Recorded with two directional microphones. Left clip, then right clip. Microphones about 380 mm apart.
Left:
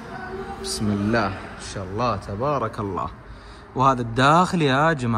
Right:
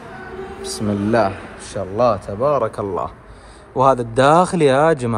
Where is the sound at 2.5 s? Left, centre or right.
Centre.